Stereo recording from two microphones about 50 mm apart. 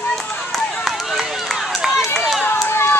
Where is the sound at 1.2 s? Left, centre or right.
Centre.